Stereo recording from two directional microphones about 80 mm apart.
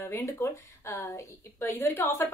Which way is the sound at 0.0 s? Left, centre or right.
Left.